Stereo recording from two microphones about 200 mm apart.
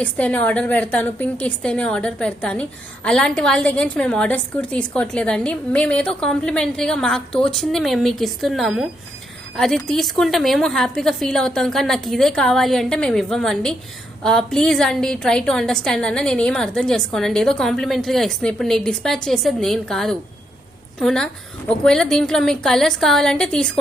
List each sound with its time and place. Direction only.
0.0 s a woman's voice: 5° left (ahead or behind)